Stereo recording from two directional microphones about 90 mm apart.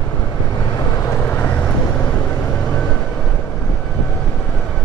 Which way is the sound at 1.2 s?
20° left (ahead or behind).